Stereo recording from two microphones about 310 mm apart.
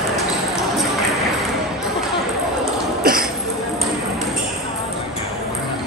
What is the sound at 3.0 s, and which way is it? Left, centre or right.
Cough, right.